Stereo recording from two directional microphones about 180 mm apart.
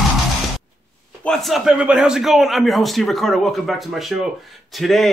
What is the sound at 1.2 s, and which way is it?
Speech, centre (ahead or behind).